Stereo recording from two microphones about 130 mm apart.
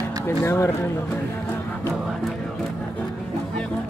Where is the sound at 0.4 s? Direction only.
20° left (ahead or behind).